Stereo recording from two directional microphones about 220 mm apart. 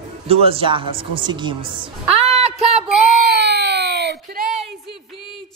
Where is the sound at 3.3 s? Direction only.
50° right (ahead or behind).